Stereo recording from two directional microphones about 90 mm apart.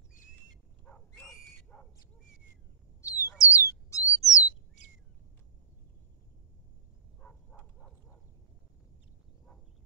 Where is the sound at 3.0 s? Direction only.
35° left (ahead or behind).